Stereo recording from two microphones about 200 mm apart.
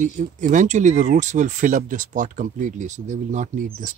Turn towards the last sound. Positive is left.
turn(degrees=-40)  # may be behind; listen again after turning